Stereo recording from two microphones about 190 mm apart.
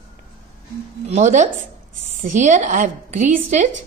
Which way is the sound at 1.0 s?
40° right (ahead or behind).